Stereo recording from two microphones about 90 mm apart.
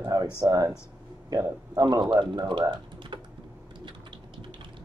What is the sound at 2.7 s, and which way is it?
Typing, 65° right (ahead or behind).